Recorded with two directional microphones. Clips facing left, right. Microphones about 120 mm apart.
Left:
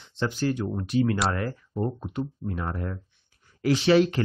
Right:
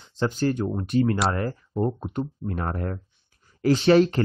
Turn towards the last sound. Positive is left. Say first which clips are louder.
# right 2 dB
turn(degrees=-40)  # may be behind; listen again after turning